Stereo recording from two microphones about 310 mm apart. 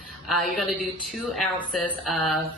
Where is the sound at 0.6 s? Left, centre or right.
Centre.